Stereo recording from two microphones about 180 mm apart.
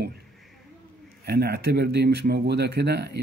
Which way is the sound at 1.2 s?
60° right (ahead or behind).